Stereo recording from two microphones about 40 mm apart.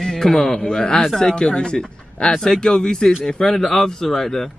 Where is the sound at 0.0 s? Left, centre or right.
Centre.